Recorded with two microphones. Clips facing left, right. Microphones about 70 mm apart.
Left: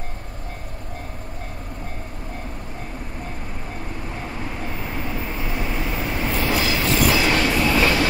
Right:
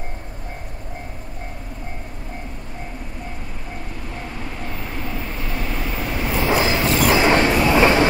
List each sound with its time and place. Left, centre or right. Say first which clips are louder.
4.6 s vehicle: even; centre
6.3 s train: right 5 dB; right